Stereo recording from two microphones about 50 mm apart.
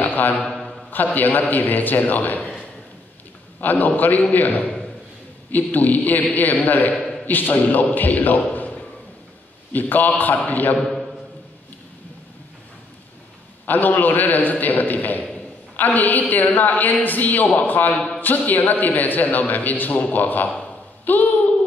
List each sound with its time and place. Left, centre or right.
0.0 s a sound: left
0.4 s a man's voice: centre
0.9 s a man's voice: left
3.8 s a man's voice: left
7.0 s a sound: centre
7.2 s a man's voice: left
13.7 s a man's voice: left
17.9 s a man's voice: centre
18.2 s a man's voice: left